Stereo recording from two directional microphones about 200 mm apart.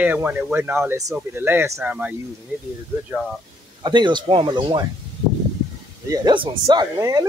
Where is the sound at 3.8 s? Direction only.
25° right (ahead or behind).